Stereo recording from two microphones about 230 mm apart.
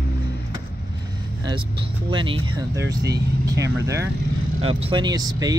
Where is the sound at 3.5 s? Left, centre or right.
Centre.